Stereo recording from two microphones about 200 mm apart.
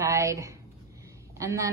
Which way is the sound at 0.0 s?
15° right (ahead or behind).